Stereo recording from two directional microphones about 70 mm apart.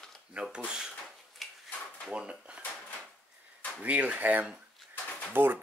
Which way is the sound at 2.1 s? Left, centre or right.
Centre.